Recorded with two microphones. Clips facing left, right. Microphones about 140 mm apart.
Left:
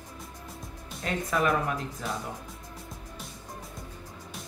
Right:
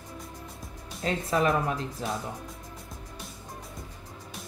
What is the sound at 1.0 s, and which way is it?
Speech, 30° right (ahead or behind).